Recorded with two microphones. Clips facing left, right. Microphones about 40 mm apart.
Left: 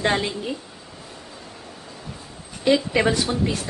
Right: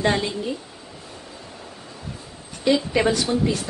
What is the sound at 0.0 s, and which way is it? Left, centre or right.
Speech, left.